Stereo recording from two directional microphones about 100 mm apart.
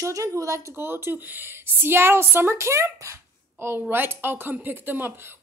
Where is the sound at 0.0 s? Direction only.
30° right (ahead or behind).